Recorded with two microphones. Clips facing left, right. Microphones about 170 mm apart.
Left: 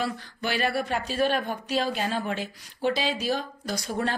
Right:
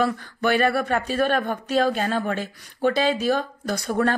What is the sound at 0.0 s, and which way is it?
Speech, 55° right (ahead or behind).